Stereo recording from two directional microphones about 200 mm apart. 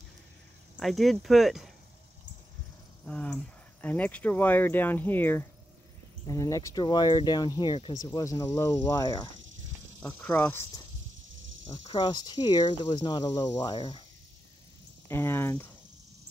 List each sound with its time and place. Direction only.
0.7 s speech: centre (ahead or behind)
3.1 s speech: 5° left (ahead or behind)
15.0 s speech: 10° left (ahead or behind)